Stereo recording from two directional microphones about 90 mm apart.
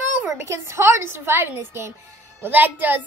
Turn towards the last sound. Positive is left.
turn(degrees=-20)  # may be behind; listen again after turning